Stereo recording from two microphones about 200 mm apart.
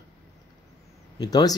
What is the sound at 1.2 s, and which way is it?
Speech, 20° left (ahead or behind).